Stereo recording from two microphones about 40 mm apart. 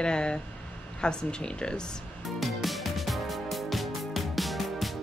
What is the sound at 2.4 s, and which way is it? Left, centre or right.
Music, centre.